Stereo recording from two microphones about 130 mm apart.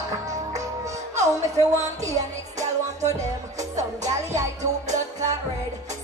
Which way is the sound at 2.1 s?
65° right (ahead or behind).